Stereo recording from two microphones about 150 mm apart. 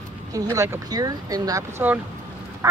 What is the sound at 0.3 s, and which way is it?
Speech, 25° right (ahead or behind).